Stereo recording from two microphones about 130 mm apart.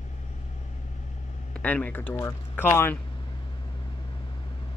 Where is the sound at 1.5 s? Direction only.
10° left (ahead or behind).